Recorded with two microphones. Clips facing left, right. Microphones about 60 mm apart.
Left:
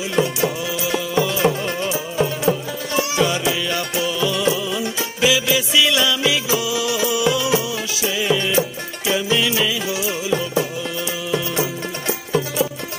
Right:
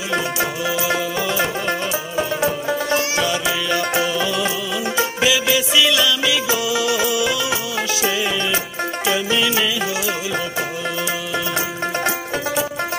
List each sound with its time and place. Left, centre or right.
0.1 s music: right
4.2 s music: centre
5.2 s music: centre
9.1 s music: centre